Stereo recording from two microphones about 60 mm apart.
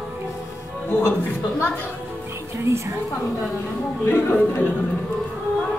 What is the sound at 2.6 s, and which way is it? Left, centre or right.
Speech, right.